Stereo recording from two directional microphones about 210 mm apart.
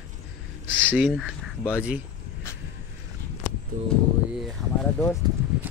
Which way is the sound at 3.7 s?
40° right (ahead or behind).